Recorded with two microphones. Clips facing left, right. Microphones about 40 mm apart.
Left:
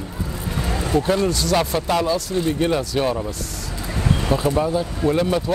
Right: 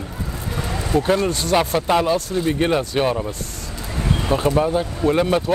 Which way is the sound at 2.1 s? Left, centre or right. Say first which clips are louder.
Right 2 dB; right.